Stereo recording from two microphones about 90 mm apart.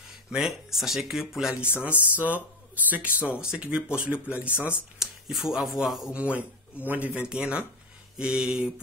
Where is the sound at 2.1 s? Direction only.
15° right (ahead or behind).